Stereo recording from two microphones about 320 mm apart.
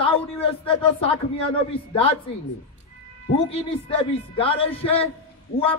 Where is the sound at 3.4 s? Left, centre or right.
Centre.